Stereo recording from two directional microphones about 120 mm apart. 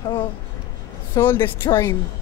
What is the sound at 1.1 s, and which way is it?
Speech, 20° left (ahead or behind).